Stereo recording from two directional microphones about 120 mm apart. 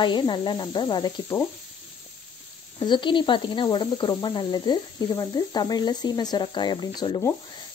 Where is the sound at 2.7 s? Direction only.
40° left (ahead or behind).